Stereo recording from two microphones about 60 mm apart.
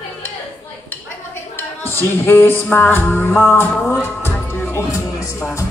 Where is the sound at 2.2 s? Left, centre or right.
Left.